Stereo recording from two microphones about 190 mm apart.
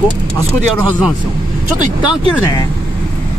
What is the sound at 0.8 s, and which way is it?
Speech, centre (ahead or behind).